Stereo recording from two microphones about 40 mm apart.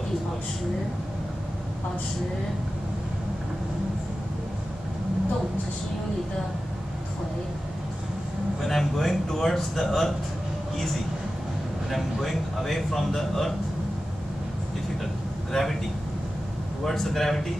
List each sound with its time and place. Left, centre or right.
8.6 s speech: centre
11.9 s speech: centre
15.5 s speech: centre
16.8 s speech: centre